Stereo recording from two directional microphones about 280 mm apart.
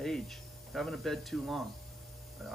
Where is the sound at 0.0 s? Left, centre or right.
Centre.